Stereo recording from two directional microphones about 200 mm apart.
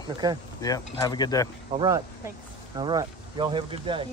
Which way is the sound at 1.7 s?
25° right (ahead or behind).